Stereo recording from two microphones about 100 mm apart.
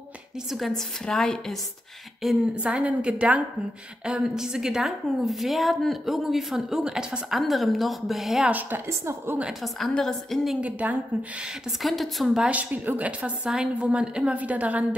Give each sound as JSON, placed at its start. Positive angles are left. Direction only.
{"t": 0.5, "sound": "a woman's voice", "side_deg": 0}
{"t": 8.5, "sound": "a woman's voice", "side_deg": -20}
{"t": 9.4, "sound": "a woman's voice", "side_deg": 0}
{"t": 10.6, "sound": "a woman's voice", "side_deg": -15}
{"t": 11.8, "sound": "a woman's voice", "side_deg": 0}
{"t": 12.4, "sound": "a woman's voice", "side_deg": -15}
{"t": 13.5, "sound": "a woman's voice", "side_deg": -5}